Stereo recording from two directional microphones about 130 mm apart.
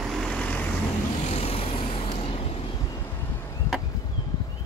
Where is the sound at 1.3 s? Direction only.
50° left (ahead or behind).